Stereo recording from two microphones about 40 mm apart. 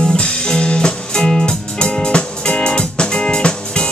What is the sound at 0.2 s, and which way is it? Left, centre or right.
Music, left.